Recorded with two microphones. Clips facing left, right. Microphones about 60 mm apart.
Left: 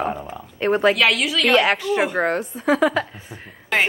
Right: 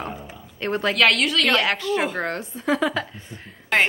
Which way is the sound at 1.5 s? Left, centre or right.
Centre.